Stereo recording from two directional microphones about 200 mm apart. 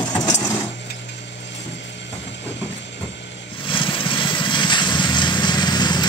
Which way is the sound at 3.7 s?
25° left (ahead or behind).